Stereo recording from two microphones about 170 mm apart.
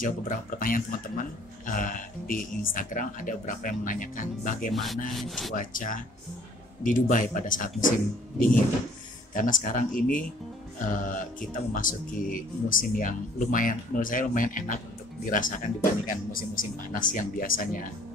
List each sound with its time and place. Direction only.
0.0 s speech: 55° left (ahead or behind)
5.1 s speech: centre (ahead or behind)
5.5 s speech: 50° left (ahead or behind)
9.3 s speech: 50° left (ahead or behind)